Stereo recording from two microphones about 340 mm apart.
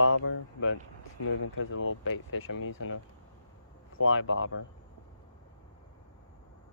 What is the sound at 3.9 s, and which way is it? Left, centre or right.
Speech, left.